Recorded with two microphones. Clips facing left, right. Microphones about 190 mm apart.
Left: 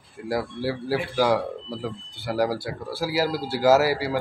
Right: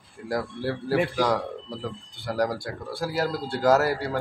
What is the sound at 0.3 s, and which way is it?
Speech, 5° left (ahead or behind).